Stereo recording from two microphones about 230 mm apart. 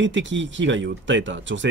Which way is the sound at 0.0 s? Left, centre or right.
Right.